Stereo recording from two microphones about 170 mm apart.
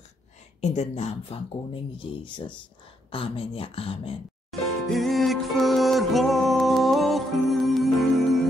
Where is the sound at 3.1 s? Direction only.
30° left (ahead or behind).